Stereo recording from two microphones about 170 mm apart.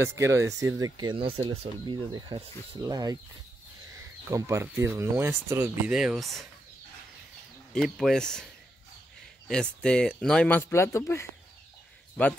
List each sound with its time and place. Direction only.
0.0 s speech: 15° right (ahead or behind)
4.3 s speech: 15° right (ahead or behind)
5.9 s speech: centre (ahead or behind)
7.7 s speech: centre (ahead or behind)
9.5 s speech: 5° left (ahead or behind)
10.7 s speech: 15° left (ahead or behind)